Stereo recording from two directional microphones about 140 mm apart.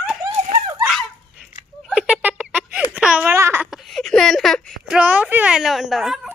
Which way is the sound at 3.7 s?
Centre (ahead or behind).